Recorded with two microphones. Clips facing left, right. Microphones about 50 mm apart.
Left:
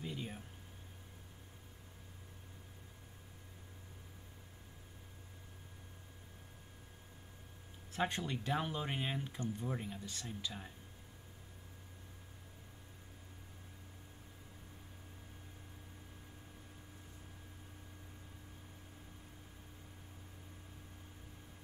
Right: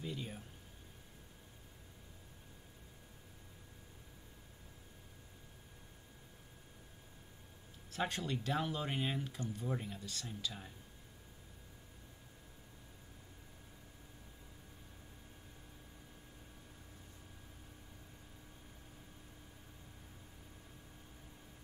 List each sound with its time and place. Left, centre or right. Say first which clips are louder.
0.0 s a sound: even; centre
8.0 s speech: left 1 dB; centre
9.7 s speech: right 1 dB; centre
9.9 s speech: even; centre